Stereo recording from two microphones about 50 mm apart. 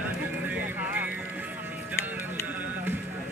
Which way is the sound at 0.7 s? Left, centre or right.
Right.